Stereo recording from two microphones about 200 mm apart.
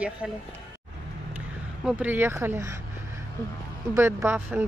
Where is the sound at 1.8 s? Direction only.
5° right (ahead or behind).